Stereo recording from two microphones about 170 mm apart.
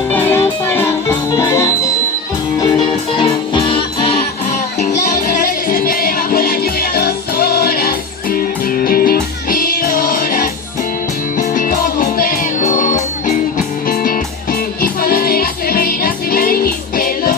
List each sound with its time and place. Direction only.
0.1 s music: 10° left (ahead or behind)
3.2 s music: 30° left (ahead or behind)
5.0 s music: 50° left (ahead or behind)